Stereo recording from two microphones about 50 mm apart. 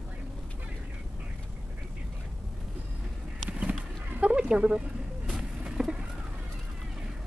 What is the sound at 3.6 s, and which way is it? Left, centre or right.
Chicken, right.